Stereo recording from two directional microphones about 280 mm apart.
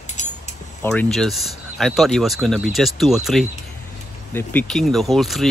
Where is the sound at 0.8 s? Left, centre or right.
Centre.